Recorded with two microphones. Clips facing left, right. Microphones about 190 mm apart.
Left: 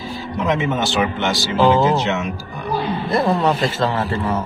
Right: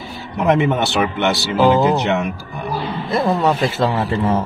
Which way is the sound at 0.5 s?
60° right (ahead or behind).